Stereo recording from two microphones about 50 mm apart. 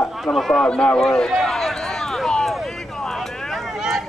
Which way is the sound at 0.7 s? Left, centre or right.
Centre.